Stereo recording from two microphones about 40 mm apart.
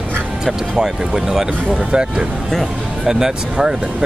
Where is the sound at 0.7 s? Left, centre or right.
Centre.